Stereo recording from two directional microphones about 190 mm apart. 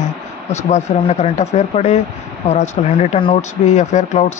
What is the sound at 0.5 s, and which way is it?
Speech, 35° left (ahead or behind).